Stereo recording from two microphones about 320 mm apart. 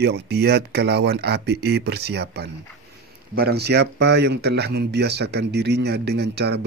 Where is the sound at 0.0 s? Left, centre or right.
Right.